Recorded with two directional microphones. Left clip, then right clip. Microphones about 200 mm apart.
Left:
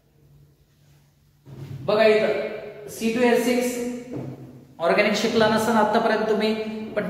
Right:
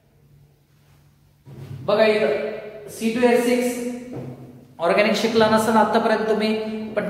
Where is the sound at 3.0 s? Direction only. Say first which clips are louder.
Right 1 dB; 5° right (ahead or behind).